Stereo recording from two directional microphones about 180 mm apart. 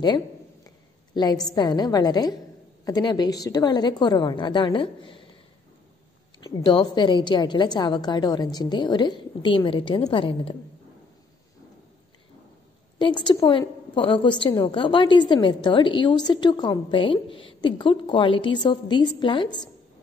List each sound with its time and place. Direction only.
0.7 s a sound: 20° left (ahead or behind)
1.5 s a woman's voice: 20° left (ahead or behind)
6.4 s a woman's voice: 25° left (ahead or behind)
13.0 s a woman's voice: 25° left (ahead or behind)